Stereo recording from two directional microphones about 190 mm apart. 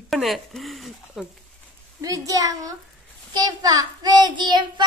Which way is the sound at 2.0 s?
15° right (ahead or behind).